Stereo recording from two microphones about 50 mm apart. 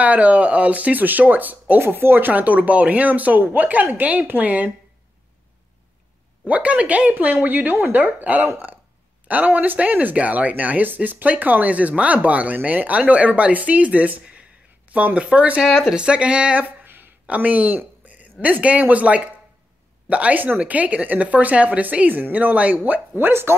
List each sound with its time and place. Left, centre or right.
0.0 s speech: right
6.4 s speech: right
8.5 s speech: right
9.3 s speech: right
15.6 s speech: centre
16.0 s speech: right
16.8 s a sound: right
17.3 s a sound: right
18.4 s speech: right
23.1 s speech: right